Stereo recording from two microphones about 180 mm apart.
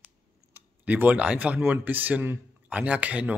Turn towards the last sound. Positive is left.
turn(degrees=-10)  # may be behind; listen again after turning